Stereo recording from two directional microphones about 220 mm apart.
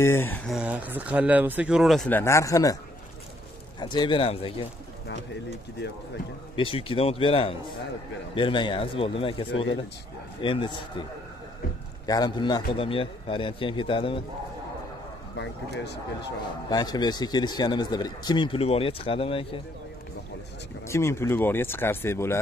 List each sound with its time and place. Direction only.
0.0 s speech: 10° left (ahead or behind)
0.5 s speech: 5° right (ahead or behind); by 2.8 s 15° left (ahead or behind)
3.8 s speech: 20° left (ahead or behind)
6.5 s speech: 25° left (ahead or behind)
12.1 s speech: 20° left (ahead or behind)
15.3 s speech: 50° left (ahead or behind)
16.6 s speech: 20° left (ahead or behind)
20.8 s speech: 10° left (ahead or behind)